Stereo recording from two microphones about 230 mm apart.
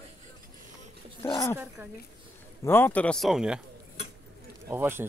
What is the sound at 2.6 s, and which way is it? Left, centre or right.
Speech, centre.